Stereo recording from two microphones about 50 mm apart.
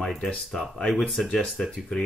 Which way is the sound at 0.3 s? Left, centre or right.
Centre.